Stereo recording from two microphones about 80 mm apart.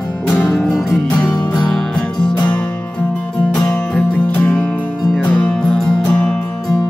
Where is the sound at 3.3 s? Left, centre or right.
Centre.